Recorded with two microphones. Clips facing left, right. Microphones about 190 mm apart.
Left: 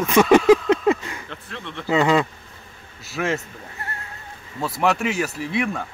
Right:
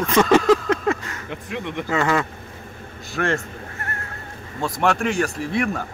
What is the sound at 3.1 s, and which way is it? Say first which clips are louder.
Speech: right 1 dB; 5° left (ahead or behind).